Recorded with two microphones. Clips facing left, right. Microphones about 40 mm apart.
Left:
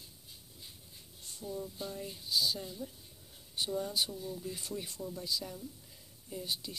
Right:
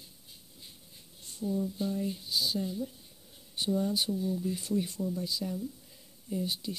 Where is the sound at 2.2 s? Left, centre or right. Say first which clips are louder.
Left 4 dB; right.